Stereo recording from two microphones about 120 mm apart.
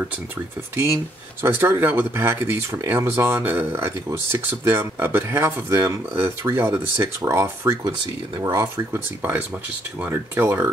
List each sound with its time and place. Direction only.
0.7 s speech: 20° right (ahead or behind)